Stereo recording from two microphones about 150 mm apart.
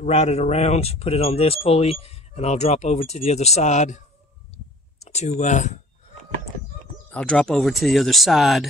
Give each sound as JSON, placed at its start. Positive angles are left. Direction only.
{"t": 0.0, "sound": "speech", "side_deg": 45}
{"t": 5.0, "sound": "speech", "side_deg": 50}
{"t": 7.1, "sound": "speech", "side_deg": 5}